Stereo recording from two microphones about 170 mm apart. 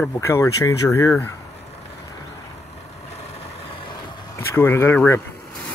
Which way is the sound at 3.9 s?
15° left (ahead or behind).